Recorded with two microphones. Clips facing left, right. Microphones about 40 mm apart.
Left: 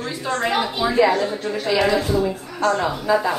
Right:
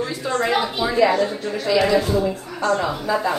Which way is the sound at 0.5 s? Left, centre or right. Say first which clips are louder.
Left 1 dB; centre.